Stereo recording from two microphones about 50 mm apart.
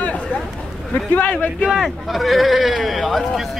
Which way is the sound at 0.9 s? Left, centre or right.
Left.